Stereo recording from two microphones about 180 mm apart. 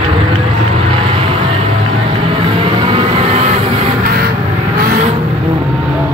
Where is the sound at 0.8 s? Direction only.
30° right (ahead or behind).